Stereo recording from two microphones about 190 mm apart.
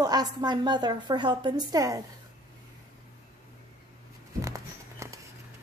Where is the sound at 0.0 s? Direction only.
20° right (ahead or behind).